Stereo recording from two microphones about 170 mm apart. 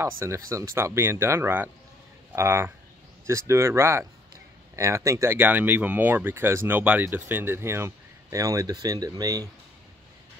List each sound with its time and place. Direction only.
0.0 s speech: 15° right (ahead or behind)